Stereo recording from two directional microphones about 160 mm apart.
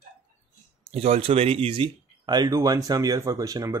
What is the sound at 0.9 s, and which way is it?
Speech, 40° right (ahead or behind).